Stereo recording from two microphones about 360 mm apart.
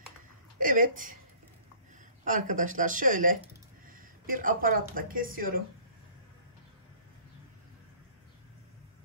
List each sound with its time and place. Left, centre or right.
0.6 s speech: right
2.2 s speech: right